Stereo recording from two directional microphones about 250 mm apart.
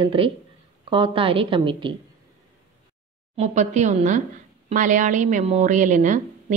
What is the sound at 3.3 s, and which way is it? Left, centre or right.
A woman's voice, right.